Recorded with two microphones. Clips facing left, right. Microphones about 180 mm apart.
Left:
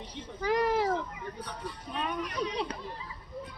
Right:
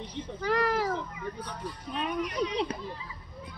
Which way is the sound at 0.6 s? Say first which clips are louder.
Left 1 dB; 20° left (ahead or behind).